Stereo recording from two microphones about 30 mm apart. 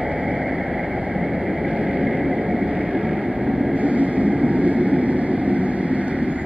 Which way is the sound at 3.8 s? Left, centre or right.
Right.